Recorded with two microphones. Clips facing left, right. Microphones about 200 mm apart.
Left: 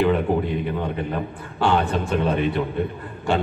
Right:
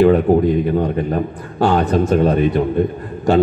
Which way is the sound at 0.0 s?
40° right (ahead or behind).